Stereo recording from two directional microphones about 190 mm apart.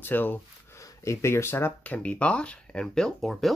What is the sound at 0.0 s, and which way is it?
Speech, 10° left (ahead or behind).